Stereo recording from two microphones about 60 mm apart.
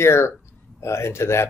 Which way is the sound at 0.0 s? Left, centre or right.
Left.